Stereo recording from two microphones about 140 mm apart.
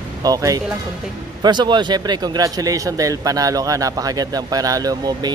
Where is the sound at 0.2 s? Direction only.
25° right (ahead or behind).